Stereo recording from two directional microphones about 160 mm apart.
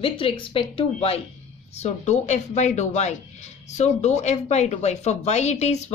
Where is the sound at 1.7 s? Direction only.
45° left (ahead or behind).